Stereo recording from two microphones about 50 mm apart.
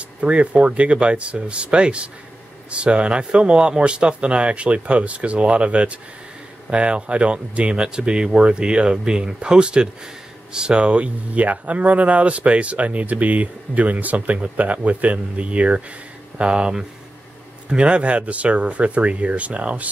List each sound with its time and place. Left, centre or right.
0.2 s speech: right